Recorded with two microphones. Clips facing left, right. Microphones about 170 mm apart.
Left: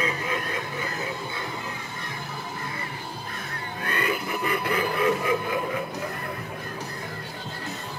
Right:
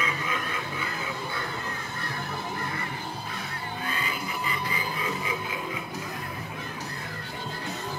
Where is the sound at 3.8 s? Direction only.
65° left (ahead or behind).